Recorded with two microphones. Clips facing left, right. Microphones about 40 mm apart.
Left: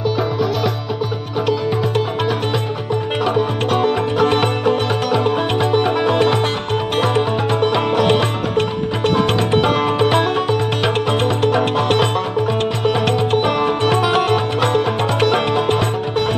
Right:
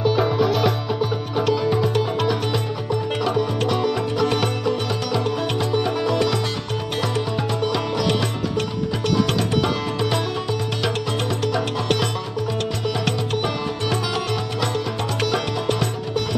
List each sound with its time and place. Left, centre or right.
0.1 s music: centre
3.3 s music: left